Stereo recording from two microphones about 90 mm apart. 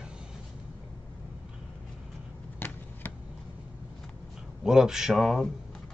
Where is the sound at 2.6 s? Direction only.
25° left (ahead or behind).